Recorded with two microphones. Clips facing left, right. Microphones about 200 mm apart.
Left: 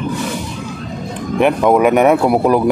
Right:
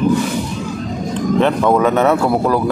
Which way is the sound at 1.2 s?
15° left (ahead or behind).